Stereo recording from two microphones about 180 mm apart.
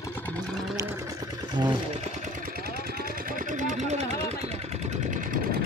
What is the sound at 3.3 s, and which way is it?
Vehicle, 45° right (ahead or behind).